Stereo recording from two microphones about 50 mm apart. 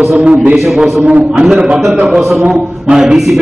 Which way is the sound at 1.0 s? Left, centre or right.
Right.